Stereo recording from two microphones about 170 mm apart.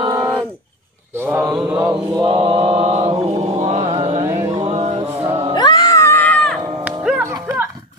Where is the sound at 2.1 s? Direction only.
30° right (ahead or behind).